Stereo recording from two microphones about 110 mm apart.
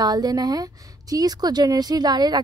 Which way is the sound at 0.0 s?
35° right (ahead or behind).